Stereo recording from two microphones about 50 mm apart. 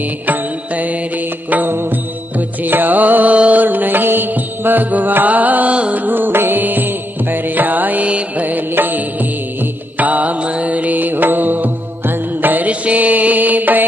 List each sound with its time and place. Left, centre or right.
1.5 s music: right